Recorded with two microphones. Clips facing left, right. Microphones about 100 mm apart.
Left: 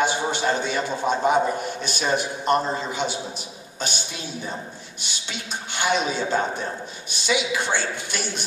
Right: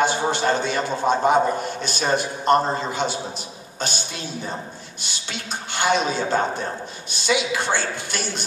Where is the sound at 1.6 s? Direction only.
15° left (ahead or behind).